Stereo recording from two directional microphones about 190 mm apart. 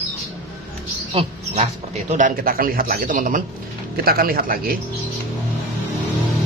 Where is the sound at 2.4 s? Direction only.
50° right (ahead or behind).